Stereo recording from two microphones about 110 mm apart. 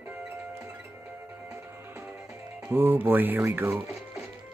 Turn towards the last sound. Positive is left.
turn(degrees=-20)  # may be behind; listen again after turning